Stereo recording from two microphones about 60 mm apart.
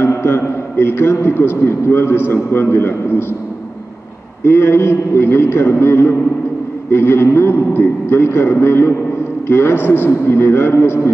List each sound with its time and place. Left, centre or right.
0.0 s a man's voice: left
4.5 s a man's voice: left